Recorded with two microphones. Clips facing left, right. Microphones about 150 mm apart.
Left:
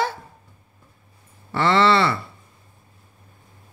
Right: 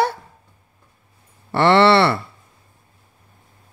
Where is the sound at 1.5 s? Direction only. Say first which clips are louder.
Right 4 dB; 70° right (ahead or behind).